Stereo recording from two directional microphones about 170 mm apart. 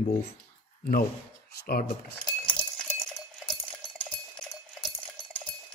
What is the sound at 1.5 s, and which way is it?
Speech, 65° left (ahead or behind).